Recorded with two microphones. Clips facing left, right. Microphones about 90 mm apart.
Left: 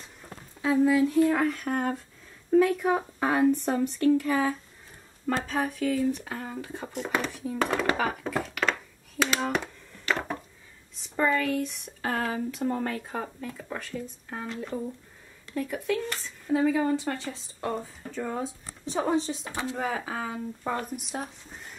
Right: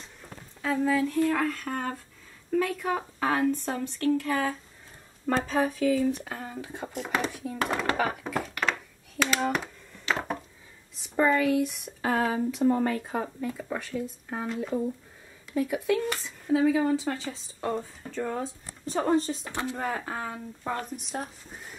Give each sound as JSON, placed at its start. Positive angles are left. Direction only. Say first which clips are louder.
{"t": 0.7, "sound": "speech", "louder": "left 4 dB", "side_deg": 10}
{"t": 5.2, "sound": "speech", "louder": "right 2 dB", "side_deg": 0}
{"t": 11.0, "sound": "speech", "louder": "right 2 dB", "side_deg": -10}